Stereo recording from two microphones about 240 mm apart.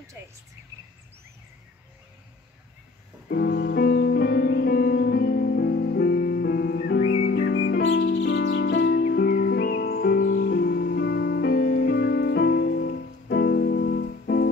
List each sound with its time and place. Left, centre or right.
3.3 s music: left